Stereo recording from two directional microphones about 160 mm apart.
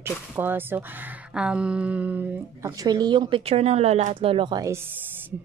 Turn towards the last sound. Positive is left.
turn(degrees=-15)  # may be behind; listen again after turning